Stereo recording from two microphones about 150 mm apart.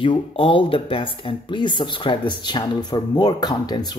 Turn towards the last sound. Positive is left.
turn(degrees=30)  # may be behind; listen again after turning